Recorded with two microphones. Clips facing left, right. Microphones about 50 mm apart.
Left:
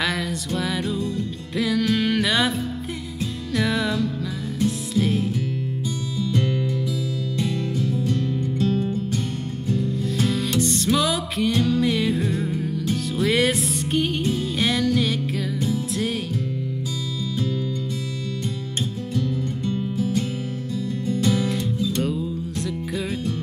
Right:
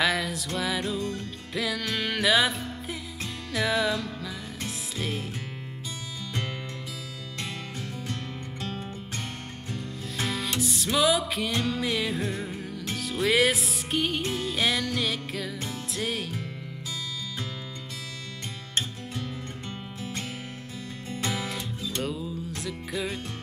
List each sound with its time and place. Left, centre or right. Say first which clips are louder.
0.0 s music: left 1 dB; centre
3.5 s music: left 3 dB; centre
8.5 s music: left 13 dB; right
9.8 s music: left 9 dB; centre
21.9 s music: left 7 dB; centre